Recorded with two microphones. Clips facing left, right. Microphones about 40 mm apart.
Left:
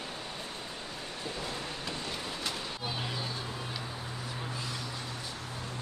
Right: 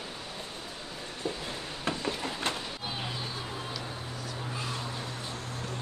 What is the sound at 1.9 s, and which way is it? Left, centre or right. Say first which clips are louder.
Vehicle: right 10 dB; right.